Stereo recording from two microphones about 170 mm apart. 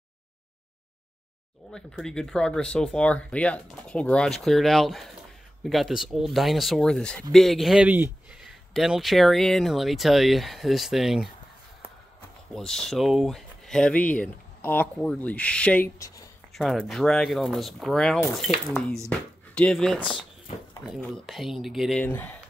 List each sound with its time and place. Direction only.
1.7 s speech: 5° left (ahead or behind)
12.5 s speech: centre (ahead or behind)
16.0 s speech: 20° left (ahead or behind)
16.5 s speech: centre (ahead or behind)
22.0 s speech: 10° left (ahead or behind)